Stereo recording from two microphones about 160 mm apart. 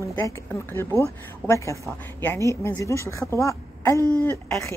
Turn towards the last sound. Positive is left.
turn(degrees=15)  # may be behind; listen again after turning